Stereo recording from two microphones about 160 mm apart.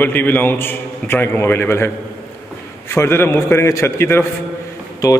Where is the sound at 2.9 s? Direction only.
15° left (ahead or behind).